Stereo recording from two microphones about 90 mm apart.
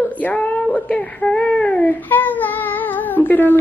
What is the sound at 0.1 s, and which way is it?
A woman's voice, 15° left (ahead or behind).